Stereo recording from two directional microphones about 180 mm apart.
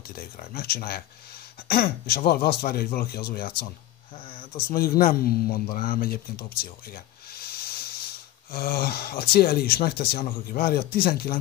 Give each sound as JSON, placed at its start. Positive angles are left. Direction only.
{"t": 0.1, "sound": "speech", "side_deg": 55}
{"t": 4.3, "sound": "speech", "side_deg": 30}
{"t": 4.6, "sound": "speech", "side_deg": 55}